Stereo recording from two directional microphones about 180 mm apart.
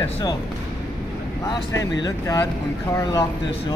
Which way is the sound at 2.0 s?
20° left (ahead or behind).